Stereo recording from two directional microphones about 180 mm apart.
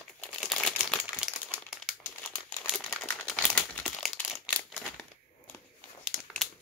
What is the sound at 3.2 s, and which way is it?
Crumpling, 5° left (ahead or behind).